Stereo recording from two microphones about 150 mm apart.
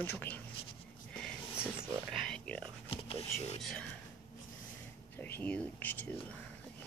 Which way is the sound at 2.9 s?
40° left (ahead or behind).